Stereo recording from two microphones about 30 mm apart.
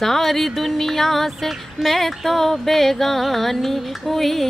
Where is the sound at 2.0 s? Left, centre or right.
Centre.